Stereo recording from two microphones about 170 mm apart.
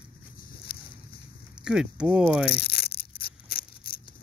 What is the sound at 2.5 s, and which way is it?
Tearing, 65° left (ahead or behind).